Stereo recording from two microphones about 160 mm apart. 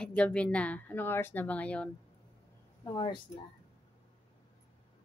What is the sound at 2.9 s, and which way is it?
Speech, 30° left (ahead or behind).